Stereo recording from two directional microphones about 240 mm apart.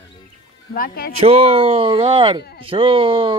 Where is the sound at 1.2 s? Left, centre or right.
Right.